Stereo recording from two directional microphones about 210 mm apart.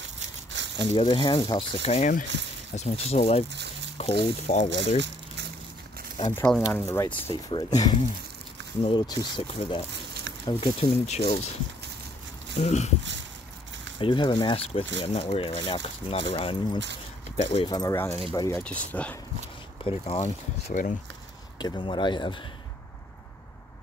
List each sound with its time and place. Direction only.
0.5 s a sound: 60° right (ahead or behind)
0.9 s speech: 20° left (ahead or behind)
4.6 s speech: 60° right (ahead or behind)
6.3 s speech: 5° left (ahead or behind)
7.2 s speech: 20° left (ahead or behind)
12.5 s speech: 30° left (ahead or behind)
13.9 s speech: 25° left (ahead or behind)
18.6 s speech: 5° left (ahead or behind)
19.8 s speech: 30° left (ahead or behind)
21.5 s speech: 20° left (ahead or behind)